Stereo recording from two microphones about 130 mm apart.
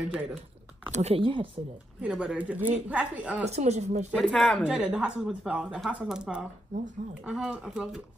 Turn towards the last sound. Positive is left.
turn(degrees=-5)  # may be behind; listen again after turning